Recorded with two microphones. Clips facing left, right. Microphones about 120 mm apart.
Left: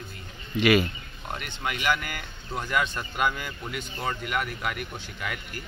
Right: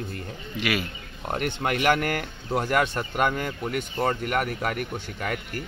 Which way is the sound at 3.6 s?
55° right (ahead or behind).